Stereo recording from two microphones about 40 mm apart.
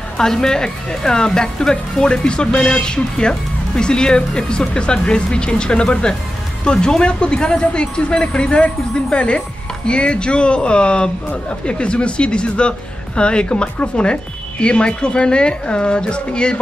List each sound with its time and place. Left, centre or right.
0.2 s speech: centre